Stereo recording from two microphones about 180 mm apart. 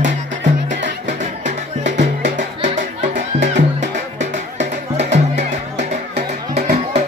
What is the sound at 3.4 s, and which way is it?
Music, 40° right (ahead or behind).